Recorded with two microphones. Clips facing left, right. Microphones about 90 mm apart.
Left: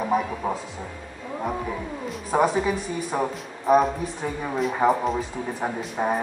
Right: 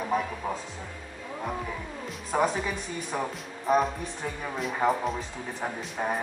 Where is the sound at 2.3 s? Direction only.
5° left (ahead or behind).